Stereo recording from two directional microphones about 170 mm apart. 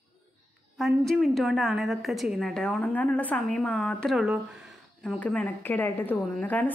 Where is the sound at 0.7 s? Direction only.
Centre (ahead or behind).